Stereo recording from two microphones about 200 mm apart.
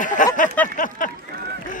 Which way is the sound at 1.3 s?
55° right (ahead or behind).